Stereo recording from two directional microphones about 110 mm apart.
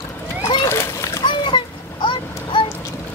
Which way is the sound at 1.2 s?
45° left (ahead or behind).